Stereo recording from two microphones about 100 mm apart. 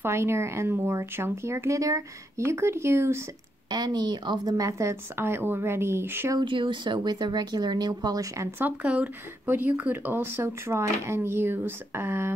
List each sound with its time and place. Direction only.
0.0 s speech: 25° right (ahead or behind)
3.7 s speech: 45° right (ahead or behind); by 6.3 s 25° right (ahead or behind)
6.4 s speech: 55° right (ahead or behind); by 8.5 s 35° right (ahead or behind)
8.5 s speech: 15° right (ahead or behind)